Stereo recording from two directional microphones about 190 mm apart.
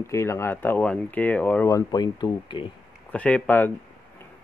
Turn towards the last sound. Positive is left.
turn(degrees=10)  # may be behind; listen again after turning